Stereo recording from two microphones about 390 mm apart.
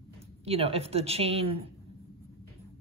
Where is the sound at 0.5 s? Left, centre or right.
Centre.